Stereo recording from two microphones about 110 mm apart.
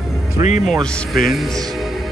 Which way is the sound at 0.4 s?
90° left.